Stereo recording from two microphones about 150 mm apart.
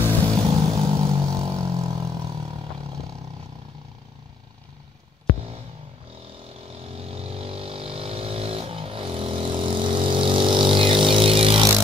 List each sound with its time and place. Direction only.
0.4 s vehicle: 25° right (ahead or behind)
6.9 s vehicle: 40° right (ahead or behind)